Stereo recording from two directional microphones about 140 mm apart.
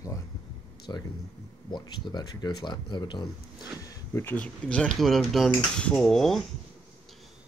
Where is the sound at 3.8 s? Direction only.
20° left (ahead or behind); by 6.4 s centre (ahead or behind).